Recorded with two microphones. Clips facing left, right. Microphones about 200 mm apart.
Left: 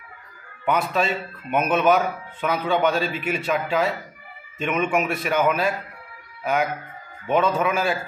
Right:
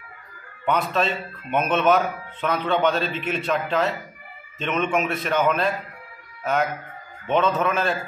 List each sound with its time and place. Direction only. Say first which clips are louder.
0.7 s a man's voice: even; 5° left (ahead or behind)